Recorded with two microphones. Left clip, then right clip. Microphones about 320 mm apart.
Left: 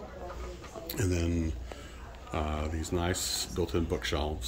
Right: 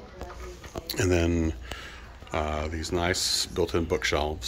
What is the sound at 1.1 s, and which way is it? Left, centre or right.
Speech, centre.